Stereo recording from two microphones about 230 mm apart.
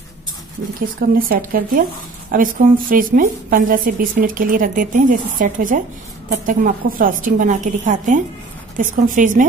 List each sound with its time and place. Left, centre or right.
1.1 s a woman's voice: right